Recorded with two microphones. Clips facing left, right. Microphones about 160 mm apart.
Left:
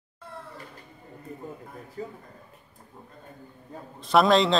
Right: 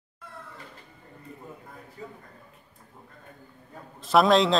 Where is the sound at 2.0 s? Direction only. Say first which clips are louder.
Left 6 dB; 40° left (ahead or behind).